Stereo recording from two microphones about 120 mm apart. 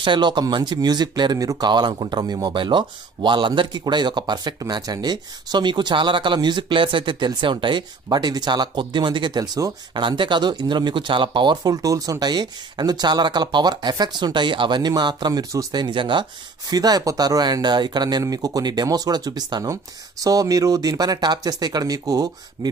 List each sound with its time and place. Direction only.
0.0 s speech: 40° right (ahead or behind)